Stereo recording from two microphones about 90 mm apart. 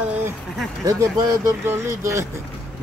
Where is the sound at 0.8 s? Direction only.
40° right (ahead or behind).